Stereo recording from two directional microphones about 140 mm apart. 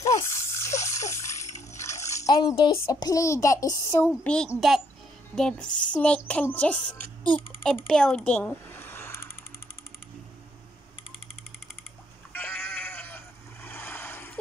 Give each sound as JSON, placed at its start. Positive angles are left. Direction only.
{"t": 0.0, "sound": "water", "side_deg": 20}
{"t": 2.7, "sound": "speech", "side_deg": 20}
{"t": 4.2, "sound": "a child's voice", "side_deg": 5}
{"t": 12.3, "sound": "sheep", "side_deg": 15}